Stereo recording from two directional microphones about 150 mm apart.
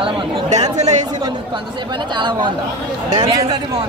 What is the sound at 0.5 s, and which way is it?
Speech, 50° right (ahead or behind).